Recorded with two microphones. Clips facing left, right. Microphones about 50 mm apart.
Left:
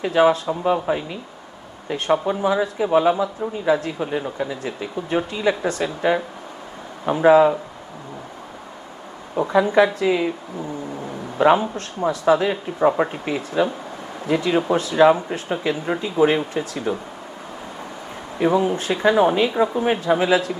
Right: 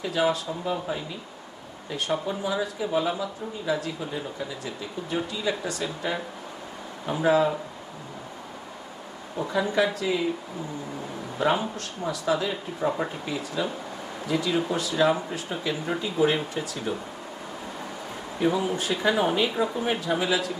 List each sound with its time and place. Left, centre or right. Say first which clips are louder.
0.0 s speech: left 8 dB; left
9.3 s speech: left 8 dB; left
11.3 s speech: left 8 dB; left
18.4 s speech: left 6 dB; left
19.8 s speech: left 7 dB; left